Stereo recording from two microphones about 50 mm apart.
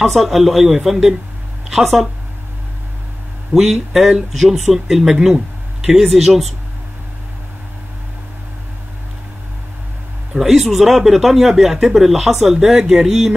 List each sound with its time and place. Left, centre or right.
0.0 s speech: centre
3.5 s speech: centre
5.3 s a sound: centre
5.9 s speech: centre
10.3 s speech: centre